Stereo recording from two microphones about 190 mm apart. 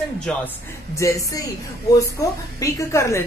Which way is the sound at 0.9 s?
15° left (ahead or behind).